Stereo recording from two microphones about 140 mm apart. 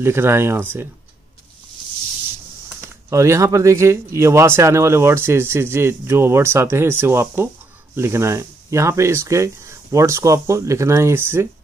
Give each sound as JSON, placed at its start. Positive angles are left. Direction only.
{"t": 0.0, "sound": "speech", "side_deg": -15}
{"t": 2.7, "sound": "speech", "side_deg": -20}